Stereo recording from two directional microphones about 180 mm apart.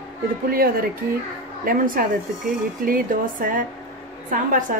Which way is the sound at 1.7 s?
50° right (ahead or behind).